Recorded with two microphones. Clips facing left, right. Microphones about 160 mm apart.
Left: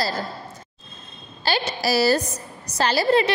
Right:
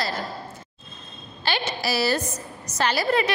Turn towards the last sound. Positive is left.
turn(degrees=30)  # may be behind; listen again after turning